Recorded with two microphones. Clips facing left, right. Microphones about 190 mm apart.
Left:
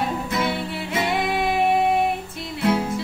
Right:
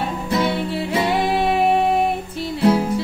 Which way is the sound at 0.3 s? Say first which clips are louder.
Right 4 dB; 30° right (ahead or behind).